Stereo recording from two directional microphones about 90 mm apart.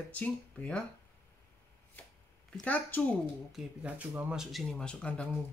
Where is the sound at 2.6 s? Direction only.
20° left (ahead or behind).